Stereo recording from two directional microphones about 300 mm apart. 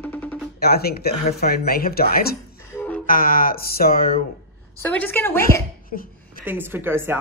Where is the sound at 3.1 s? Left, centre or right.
Left.